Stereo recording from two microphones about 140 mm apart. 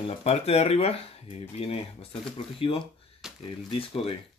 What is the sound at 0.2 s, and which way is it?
Speech, 50° left (ahead or behind).